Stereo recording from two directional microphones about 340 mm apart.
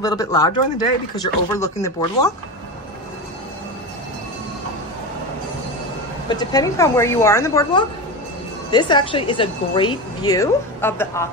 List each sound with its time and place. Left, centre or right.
0.0 s a woman's voice: centre
6.2 s a woman's voice: centre